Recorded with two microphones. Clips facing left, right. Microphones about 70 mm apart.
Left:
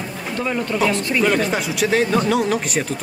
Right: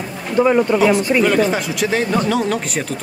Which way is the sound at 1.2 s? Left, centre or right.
Centre.